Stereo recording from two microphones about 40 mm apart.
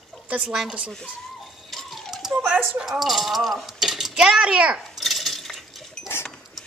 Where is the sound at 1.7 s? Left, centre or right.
Centre.